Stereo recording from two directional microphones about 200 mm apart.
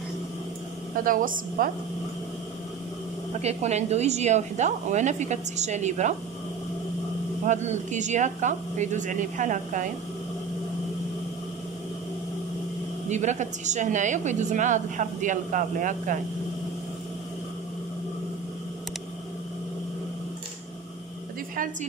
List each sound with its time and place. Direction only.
1.0 s a woman's voice: 45° right (ahead or behind)
3.3 s a woman's voice: 35° right (ahead or behind)
7.4 s a woman's voice: 35° right (ahead or behind)
13.1 s a woman's voice: 35° right (ahead or behind)